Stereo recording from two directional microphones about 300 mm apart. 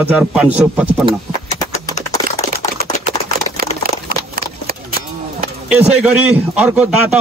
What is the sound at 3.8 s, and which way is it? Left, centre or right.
Clip-clop, right.